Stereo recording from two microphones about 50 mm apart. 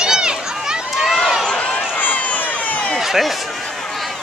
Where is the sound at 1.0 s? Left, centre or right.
Centre.